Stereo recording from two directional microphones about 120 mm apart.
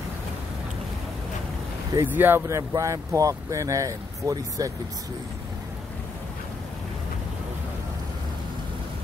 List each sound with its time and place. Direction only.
2.0 s speech: 15° right (ahead or behind)